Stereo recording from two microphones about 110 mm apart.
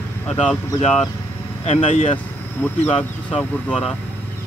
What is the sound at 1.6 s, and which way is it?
Speech, 75° left (ahead or behind).